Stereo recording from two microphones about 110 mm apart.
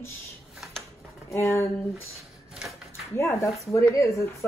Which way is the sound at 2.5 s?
5° right (ahead or behind).